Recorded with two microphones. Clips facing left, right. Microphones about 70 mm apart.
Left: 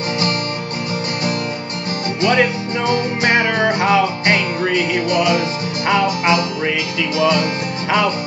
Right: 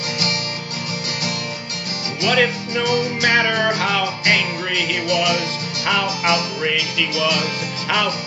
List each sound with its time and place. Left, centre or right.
2.2 s music: left